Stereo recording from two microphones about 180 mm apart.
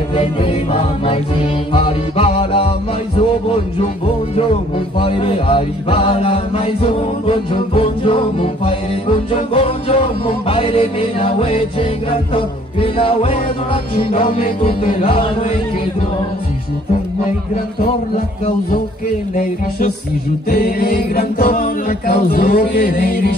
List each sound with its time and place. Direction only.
0.1 s music: 30° left (ahead or behind)
20.4 s music: 55° left (ahead or behind)